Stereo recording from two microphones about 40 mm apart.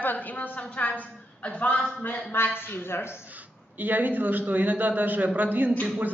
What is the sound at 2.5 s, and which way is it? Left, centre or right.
Speech, left.